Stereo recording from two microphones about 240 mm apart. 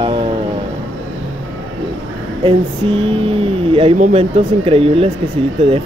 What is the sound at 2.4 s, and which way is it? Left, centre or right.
Speech, right.